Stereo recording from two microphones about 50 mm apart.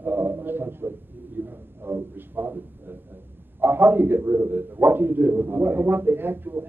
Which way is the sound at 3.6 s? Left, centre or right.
Right.